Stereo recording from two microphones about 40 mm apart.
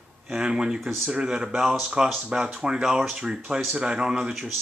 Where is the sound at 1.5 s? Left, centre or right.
Centre.